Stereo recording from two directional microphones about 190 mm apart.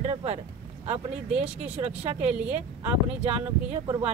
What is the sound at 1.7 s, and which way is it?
Speech, 30° right (ahead or behind).